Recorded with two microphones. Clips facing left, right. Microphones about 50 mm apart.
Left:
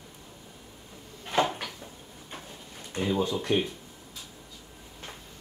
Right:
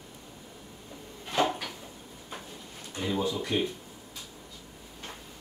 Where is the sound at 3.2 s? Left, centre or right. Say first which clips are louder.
Left 1 dB; left.